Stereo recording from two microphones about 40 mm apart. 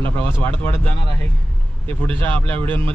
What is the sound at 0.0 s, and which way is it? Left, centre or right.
Speech, left.